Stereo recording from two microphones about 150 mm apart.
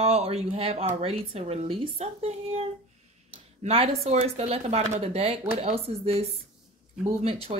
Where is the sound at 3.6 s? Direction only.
40° right (ahead or behind).